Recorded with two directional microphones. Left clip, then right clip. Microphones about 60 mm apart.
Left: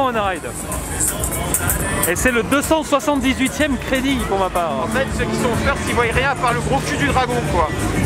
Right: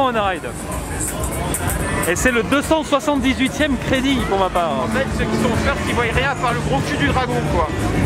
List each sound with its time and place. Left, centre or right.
0.0 s speech: centre
2.2 s speech: centre
4.3 s speech: centre
4.9 s speech: left